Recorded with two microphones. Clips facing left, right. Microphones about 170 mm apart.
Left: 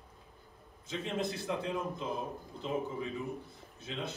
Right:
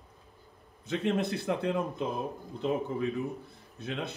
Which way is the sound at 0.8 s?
65° right (ahead or behind).